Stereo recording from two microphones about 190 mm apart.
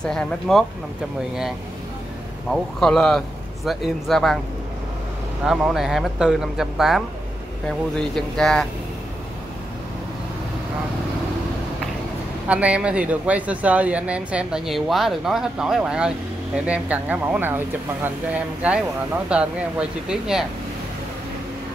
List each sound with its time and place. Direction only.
0.0 s speech: 5° left (ahead or behind)
2.5 s speech: 5° left (ahead or behind)
5.4 s speech: centre (ahead or behind)
12.4 s speech: 5° right (ahead or behind)